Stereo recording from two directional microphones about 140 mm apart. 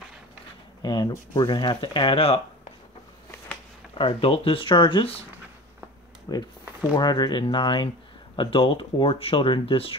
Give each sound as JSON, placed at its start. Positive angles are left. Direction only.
{"t": 0.8, "sound": "speech", "side_deg": 30}
{"t": 4.0, "sound": "speech", "side_deg": 40}
{"t": 6.3, "sound": "speech", "side_deg": 30}